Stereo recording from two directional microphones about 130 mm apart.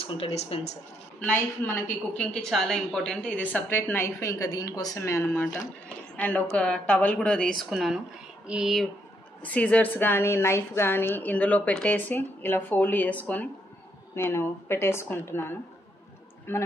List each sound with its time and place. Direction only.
0.0 s speech: 55° left (ahead or behind)
1.2 s a woman's voice: 15° left (ahead or behind)
8.5 s speech: 5° right (ahead or behind)
9.5 s a woman's voice: 10° left (ahead or behind)